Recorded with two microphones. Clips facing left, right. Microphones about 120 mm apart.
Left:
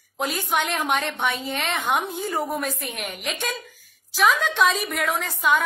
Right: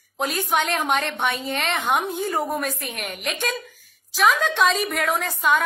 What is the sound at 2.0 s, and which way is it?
Speech, centre (ahead or behind).